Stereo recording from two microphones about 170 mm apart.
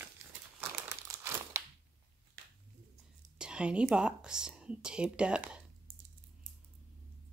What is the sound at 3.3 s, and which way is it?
Speech, 5° right (ahead or behind).